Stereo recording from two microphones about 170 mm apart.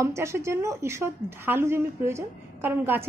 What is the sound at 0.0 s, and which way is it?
A woman's voice, 15° right (ahead or behind).